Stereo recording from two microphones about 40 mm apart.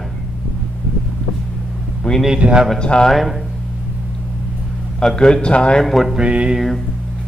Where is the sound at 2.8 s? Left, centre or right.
Left.